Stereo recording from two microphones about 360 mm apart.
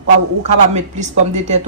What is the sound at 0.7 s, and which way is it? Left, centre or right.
Speech, centre.